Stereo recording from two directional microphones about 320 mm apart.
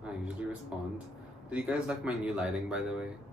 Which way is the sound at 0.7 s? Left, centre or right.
Centre.